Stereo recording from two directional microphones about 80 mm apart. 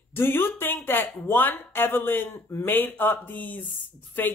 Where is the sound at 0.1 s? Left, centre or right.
Left.